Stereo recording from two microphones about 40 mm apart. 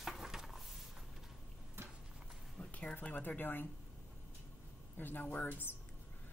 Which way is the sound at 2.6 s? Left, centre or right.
Left.